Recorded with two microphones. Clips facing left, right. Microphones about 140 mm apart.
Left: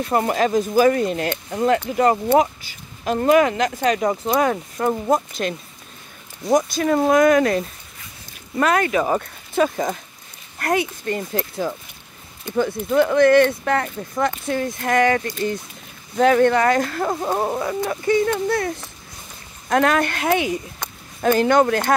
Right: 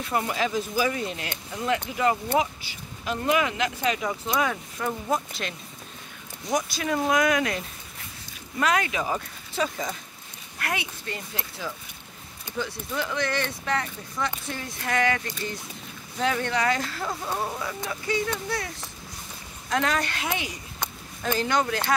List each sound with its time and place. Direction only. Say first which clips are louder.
0.0 s speech: left 7 dB; 45° left (ahead or behind)
6.5 s speech: left 9 dB; 45° left (ahead or behind)
19.7 s speech: left 8 dB; 55° left (ahead or behind)